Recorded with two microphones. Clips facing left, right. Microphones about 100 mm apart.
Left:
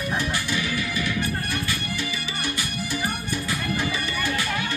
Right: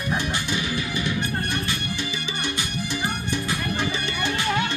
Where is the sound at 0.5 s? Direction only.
25° right (ahead or behind).